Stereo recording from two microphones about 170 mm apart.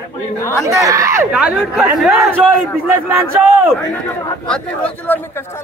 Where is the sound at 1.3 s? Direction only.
5° right (ahead or behind).